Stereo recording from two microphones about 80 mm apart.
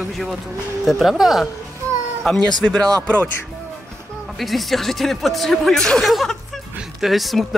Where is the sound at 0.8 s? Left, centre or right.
Centre.